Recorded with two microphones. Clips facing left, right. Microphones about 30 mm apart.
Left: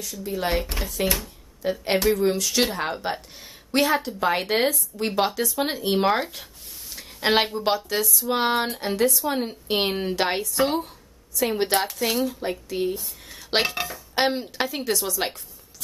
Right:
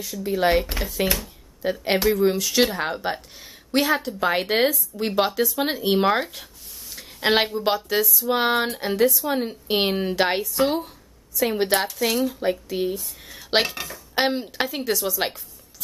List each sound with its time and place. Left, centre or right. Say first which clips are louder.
0.0 s speech: right 6 dB; centre
7.0 s a sound: right 1 dB; centre
7.4 s speech: right 1 dB; centre
7.7 s speech: right 2 dB; centre
13.3 s dishes: right 2 dB; centre
13.7 s speech: even; centre